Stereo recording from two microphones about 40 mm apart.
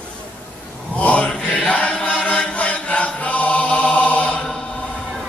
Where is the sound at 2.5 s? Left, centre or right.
Left.